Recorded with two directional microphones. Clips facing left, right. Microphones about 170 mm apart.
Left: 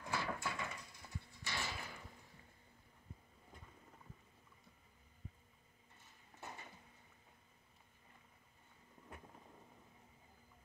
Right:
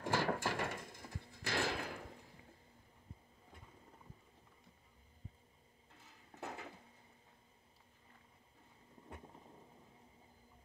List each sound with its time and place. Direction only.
0.0 s a sound: 90° right
6.4 s dishes: 70° right (ahead or behind)
9.1 s vehicle: 25° right (ahead or behind)